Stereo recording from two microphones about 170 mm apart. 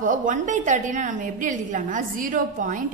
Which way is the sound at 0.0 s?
50° right (ahead or behind).